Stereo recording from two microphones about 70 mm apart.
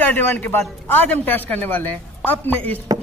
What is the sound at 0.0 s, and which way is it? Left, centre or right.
A man's voice, left.